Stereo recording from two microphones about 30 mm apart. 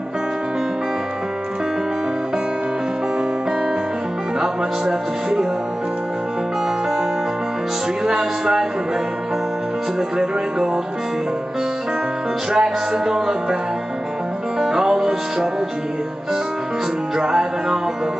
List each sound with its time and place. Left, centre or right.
4.4 s speech: centre
8.0 s music: centre
12.5 s music: centre
14.6 s music: centre
17.2 s music: centre